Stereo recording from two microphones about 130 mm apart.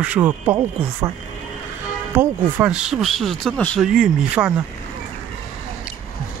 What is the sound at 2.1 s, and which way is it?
Speech, 5° right (ahead or behind).